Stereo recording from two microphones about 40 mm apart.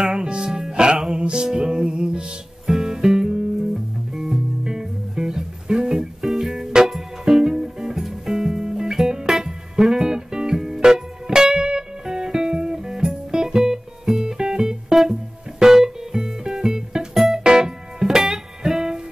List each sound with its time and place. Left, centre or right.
0.0 s music: centre
17.4 s music: centre